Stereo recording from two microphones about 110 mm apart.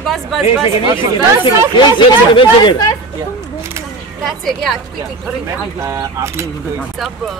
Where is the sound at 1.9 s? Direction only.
45° left (ahead or behind).